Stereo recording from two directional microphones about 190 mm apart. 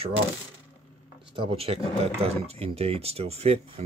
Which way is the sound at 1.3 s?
30° right (ahead or behind).